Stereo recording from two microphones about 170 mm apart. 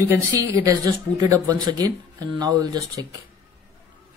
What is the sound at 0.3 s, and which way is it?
Speech, 20° right (ahead or behind).